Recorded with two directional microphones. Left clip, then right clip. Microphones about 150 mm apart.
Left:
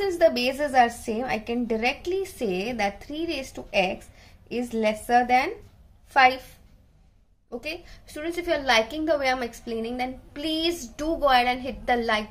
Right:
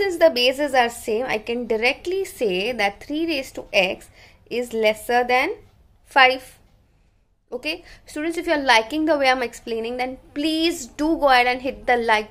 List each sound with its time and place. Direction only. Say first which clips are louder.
0.0 s a woman's voice: right 5 dB; 20° right (ahead or behind)
7.4 s a woman's voice: right 6 dB; 25° right (ahead or behind)